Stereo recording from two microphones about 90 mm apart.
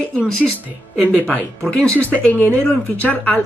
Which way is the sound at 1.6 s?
5° left (ahead or behind).